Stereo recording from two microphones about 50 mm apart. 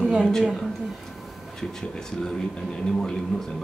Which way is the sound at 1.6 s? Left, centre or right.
Centre.